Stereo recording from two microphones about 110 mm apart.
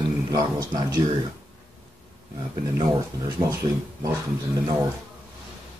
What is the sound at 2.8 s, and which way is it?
Speech, 35° right (ahead or behind).